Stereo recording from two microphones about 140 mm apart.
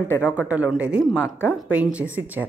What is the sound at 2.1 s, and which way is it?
Speech, 10° right (ahead or behind).